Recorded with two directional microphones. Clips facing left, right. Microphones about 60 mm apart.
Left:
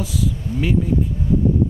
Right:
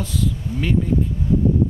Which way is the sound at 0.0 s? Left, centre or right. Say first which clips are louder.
Left 1 dB; centre.